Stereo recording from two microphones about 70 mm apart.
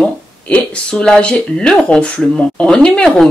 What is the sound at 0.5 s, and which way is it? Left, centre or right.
A woman's voice, centre.